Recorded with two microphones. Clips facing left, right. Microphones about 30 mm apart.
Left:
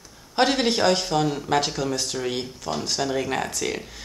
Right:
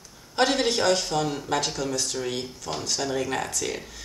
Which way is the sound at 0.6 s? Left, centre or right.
Left.